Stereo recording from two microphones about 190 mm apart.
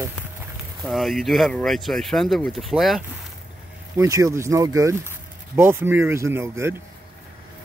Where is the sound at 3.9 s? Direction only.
15° right (ahead or behind).